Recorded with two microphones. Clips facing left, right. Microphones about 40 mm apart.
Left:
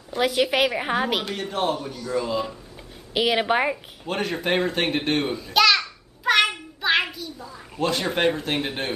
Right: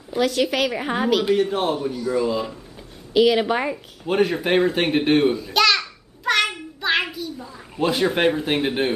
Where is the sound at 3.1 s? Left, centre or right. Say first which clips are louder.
Right 4 dB; centre.